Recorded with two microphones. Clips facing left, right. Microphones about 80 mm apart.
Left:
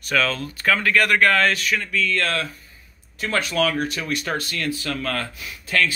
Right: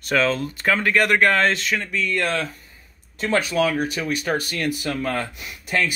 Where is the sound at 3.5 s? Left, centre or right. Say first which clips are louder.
Right 1 dB; centre.